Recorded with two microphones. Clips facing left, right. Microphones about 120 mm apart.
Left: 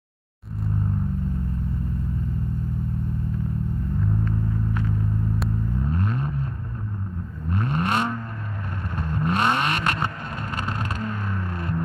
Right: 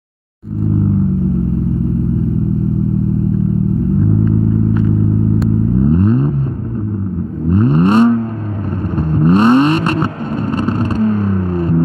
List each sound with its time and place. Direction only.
5.8 s vehicle: 25° right (ahead or behind)
7.4 s vehicle: 30° right (ahead or behind)